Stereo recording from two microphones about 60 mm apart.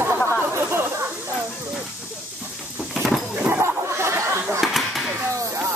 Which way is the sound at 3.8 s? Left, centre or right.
Right.